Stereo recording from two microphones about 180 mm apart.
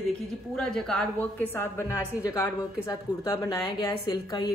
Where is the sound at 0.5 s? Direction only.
5° left (ahead or behind).